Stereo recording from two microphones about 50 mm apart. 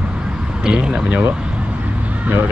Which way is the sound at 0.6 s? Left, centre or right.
Centre.